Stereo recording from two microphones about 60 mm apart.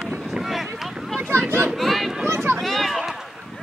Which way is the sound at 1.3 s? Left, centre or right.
Right.